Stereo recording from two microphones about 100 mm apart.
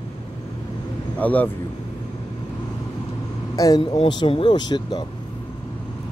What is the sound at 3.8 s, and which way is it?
Speech, 60° left (ahead or behind).